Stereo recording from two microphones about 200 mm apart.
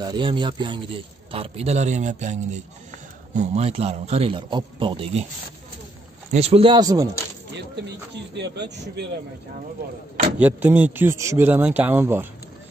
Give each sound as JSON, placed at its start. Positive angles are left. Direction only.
{"t": 0.0, "sound": "a man's voice", "side_deg": -25}
{"t": 6.3, "sound": "a man's voice", "side_deg": -30}
{"t": 8.4, "sound": "speech", "side_deg": -55}
{"t": 10.4, "sound": "a man's voice", "side_deg": -10}